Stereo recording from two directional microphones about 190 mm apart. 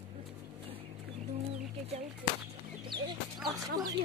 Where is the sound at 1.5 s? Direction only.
35° right (ahead or behind).